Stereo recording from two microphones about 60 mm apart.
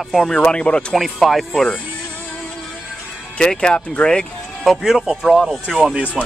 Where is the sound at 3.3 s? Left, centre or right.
Centre.